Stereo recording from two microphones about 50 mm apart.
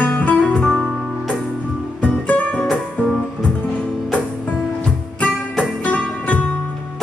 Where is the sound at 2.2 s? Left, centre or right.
Left.